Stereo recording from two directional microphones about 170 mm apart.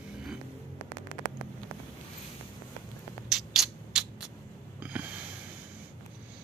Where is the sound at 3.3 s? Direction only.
Centre (ahead or behind).